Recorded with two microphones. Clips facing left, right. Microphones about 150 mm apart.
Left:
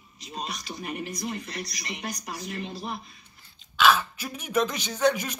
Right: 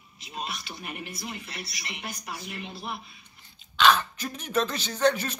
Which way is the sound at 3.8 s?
10° left (ahead or behind).